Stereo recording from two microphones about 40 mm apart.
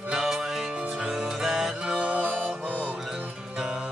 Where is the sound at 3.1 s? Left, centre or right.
Centre.